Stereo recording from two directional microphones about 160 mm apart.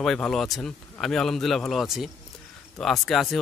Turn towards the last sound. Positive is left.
turn(degrees=0)  # may be behind; listen again after turning